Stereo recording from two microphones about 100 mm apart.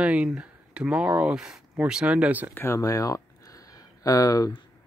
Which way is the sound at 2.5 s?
25° left (ahead or behind).